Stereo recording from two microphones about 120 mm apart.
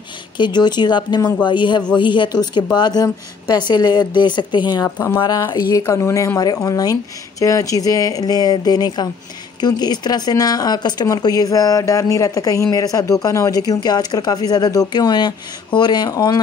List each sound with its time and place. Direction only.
0.4 s speech: 40° left (ahead or behind)
4.8 s speech: 20° left (ahead or behind)
5.5 s speech: 30° left (ahead or behind)